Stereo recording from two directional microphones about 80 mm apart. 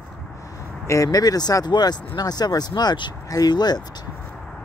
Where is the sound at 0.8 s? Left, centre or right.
Left.